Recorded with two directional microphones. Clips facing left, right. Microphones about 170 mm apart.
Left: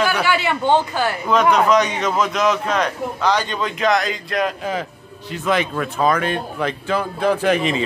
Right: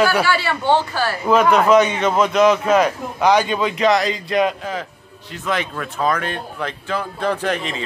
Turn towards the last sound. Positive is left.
turn(degrees=10)  # may be behind; listen again after turning